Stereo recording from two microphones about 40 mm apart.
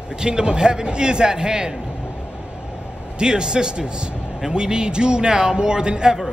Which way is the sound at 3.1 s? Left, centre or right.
Right.